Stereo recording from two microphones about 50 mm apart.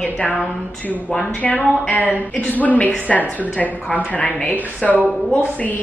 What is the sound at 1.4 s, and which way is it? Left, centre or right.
A woman's voice, left.